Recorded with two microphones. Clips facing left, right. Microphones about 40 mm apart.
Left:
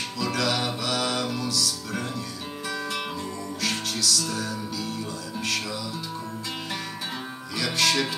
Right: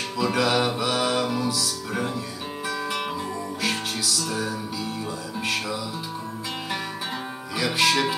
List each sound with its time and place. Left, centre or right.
0.2 s music: centre
3.6 s music: centre
7.5 s music: centre